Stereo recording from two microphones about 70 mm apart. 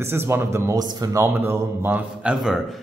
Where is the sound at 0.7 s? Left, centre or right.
Right.